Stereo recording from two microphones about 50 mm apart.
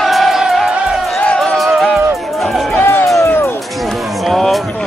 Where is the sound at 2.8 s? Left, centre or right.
Left.